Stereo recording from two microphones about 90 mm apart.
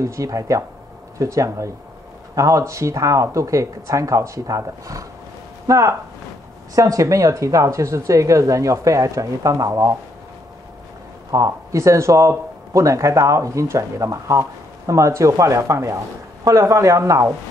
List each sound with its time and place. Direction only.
0.0 s speech: 35° right (ahead or behind)
11.3 s speech: 35° right (ahead or behind)